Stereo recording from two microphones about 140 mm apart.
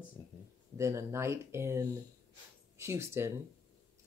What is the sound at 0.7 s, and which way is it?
Speech, 20° right (ahead or behind).